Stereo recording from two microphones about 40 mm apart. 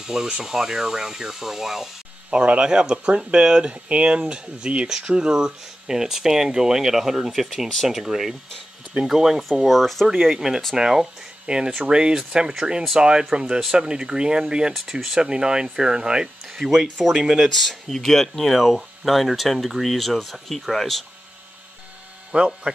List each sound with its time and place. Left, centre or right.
0.0 s speech: centre
2.3 s speech: right; by 10.3 s centre
10.3 s speech: centre
14.7 s speech: centre
15.1 s speech: centre
17.4 s speech: centre
18.6 s speech: centre
22.3 s speech: right